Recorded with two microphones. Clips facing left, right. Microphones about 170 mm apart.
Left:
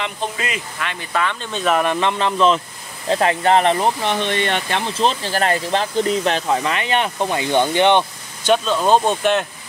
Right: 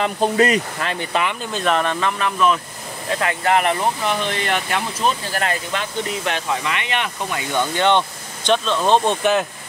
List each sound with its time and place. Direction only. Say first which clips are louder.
0.0 s speech: right 8 dB; 40° right (ahead or behind)
1.4 s speech: left 1 dB; centre (ahead or behind); by 8.0 s 20° left (ahead or behind)
8.5 s speech: left 2 dB; 5° left (ahead or behind)